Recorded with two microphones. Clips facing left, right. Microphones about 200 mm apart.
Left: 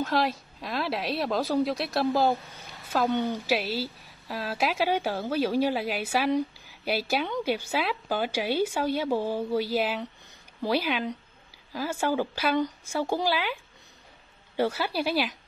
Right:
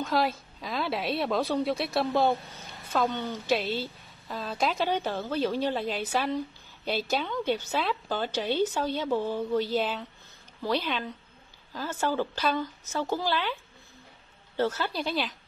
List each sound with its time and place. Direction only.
0.0 s a woman's voice: centre (ahead or behind)
14.6 s a woman's voice: 10° left (ahead or behind)